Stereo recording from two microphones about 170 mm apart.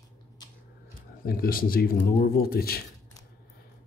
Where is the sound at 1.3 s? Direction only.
55° left (ahead or behind).